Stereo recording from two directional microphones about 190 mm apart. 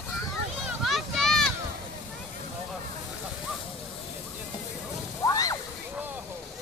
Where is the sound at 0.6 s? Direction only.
Centre (ahead or behind).